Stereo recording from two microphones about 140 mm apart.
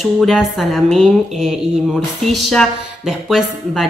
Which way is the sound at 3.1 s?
Centre (ahead or behind).